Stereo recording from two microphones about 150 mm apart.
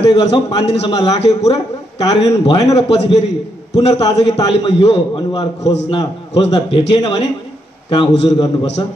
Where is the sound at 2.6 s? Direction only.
45° left (ahead or behind).